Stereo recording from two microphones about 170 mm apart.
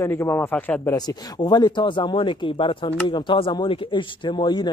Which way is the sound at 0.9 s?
25° left (ahead or behind).